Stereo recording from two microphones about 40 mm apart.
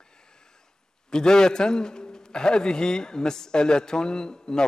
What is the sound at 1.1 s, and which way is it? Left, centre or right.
A man's voice, centre.